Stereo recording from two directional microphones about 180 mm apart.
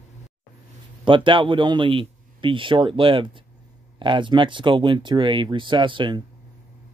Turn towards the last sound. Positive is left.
turn(degrees=-25)  # may be behind; listen again after turning